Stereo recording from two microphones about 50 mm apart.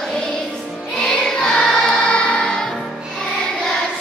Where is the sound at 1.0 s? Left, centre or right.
Centre.